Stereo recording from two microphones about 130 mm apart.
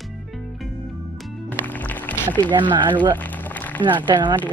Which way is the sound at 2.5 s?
35° right (ahead or behind).